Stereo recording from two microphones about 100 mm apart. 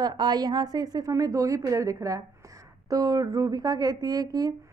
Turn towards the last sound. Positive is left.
turn(degrees=-40)  # may be behind; listen again after turning